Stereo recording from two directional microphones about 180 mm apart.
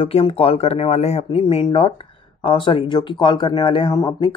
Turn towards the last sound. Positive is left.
turn(degrees=25)  # may be behind; listen again after turning